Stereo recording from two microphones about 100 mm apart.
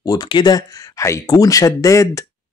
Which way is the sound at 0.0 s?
40° left (ahead or behind).